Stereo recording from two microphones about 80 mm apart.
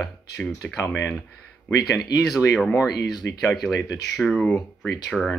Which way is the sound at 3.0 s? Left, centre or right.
Left.